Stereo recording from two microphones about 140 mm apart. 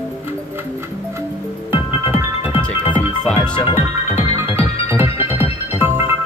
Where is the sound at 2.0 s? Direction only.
15° right (ahead or behind).